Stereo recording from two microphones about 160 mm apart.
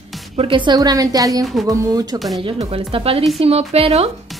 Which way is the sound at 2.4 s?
40° right (ahead or behind).